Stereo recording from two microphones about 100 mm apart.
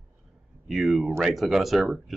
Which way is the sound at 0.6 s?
Centre (ahead or behind).